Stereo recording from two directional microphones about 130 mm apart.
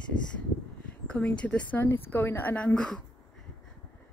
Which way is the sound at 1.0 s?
10° left (ahead or behind).